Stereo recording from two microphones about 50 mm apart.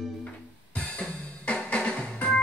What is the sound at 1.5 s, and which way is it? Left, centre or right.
Music, left.